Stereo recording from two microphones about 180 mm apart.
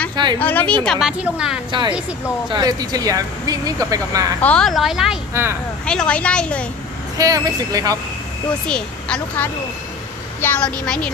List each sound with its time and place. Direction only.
0.1 s a sound: 25° right (ahead or behind)
0.4 s a woman's voice: 10° left (ahead or behind)
1.7 s speech: 25° right (ahead or behind)
4.4 s a woman's voice: 5° left (ahead or behind)
5.3 s speech: 15° right (ahead or behind)
5.9 s a woman's voice: 5° left (ahead or behind)
7.2 s speech: 20° right (ahead or behind)
8.6 s a woman's voice: 5° left (ahead or behind)